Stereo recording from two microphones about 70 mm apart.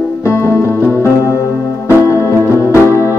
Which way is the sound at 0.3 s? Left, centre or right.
Left.